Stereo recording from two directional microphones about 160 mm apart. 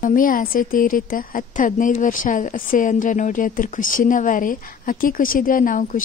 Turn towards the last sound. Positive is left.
turn(degrees=60)  # may be behind; listen again after turning